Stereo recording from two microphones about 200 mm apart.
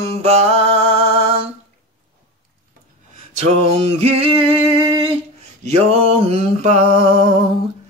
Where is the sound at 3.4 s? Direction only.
30° right (ahead or behind).